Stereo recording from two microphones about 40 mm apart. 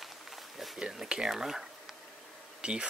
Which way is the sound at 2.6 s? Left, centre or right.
Right.